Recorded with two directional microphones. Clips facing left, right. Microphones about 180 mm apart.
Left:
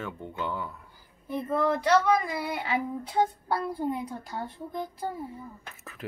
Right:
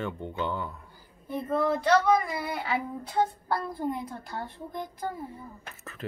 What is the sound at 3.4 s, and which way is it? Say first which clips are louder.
Child singing: left 1 dB; 15° left (ahead or behind).